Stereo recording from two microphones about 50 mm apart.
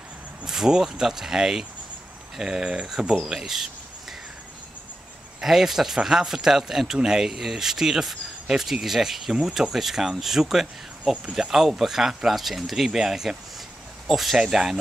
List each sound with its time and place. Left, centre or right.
0.5 s speech: centre
3.2 s speech: centre
5.4 s speech: centre